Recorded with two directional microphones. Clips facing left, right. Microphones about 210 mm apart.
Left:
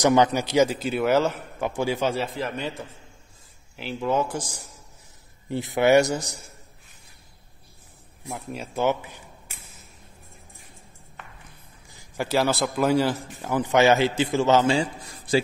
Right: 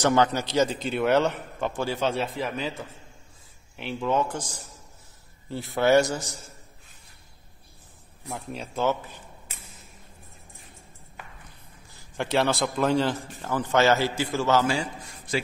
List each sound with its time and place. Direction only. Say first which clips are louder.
0.0 s a man's voice: left 3 dB; 15° left (ahead or behind)
2.1 s speech: even; centre (ahead or behind)
3.7 s a man's voice: left 1 dB; centre (ahead or behind)
8.3 s speech: left 1 dB; 5° left (ahead or behind)
8.8 s a sound: left 2 dB; 15° left (ahead or behind)
12.2 s a man's voice: left 1 dB; 5° left (ahead or behind); by 15.4 s 30° left (ahead or behind)